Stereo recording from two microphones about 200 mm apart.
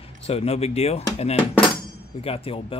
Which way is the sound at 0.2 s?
30° left (ahead or behind).